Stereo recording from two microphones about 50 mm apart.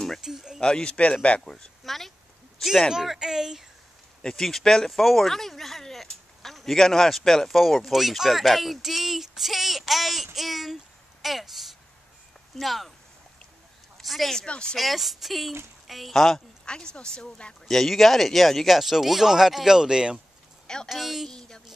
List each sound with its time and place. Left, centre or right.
0.2 s speech: centre
0.6 s a man's voice: centre
1.4 s speech: centre
2.9 s speech: centre
4.2 s speech: centre
14.0 s speech: centre
14.4 s a man's voice: centre
14.8 s speech: centre
16.6 s speech: centre
17.6 s speech: centre
20.6 s a woman's voice: centre
20.9 s speech: centre
21.3 s speech: centre